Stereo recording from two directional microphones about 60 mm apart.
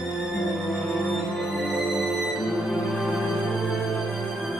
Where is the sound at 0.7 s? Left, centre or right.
Centre.